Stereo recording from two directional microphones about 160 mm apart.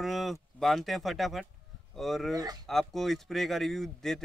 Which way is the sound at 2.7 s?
Centre (ahead or behind).